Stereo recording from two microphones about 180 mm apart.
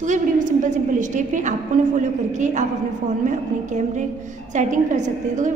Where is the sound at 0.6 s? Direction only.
45° right (ahead or behind).